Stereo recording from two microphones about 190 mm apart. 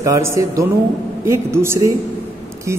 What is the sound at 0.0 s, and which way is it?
A man's voice, 15° right (ahead or behind).